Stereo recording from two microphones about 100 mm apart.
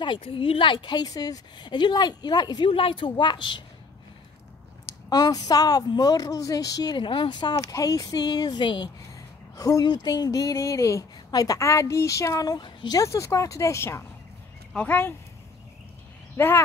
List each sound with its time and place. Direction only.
0.0 s speech: 60° left (ahead or behind)
2.7 s speech: 65° left (ahead or behind)
5.1 s speech: 40° left (ahead or behind)
9.6 s speech: 40° left (ahead or behind)
13.0 s speech: 30° left (ahead or behind)
14.7 s speech: 15° left (ahead or behind)
16.3 s speech: 25° left (ahead or behind)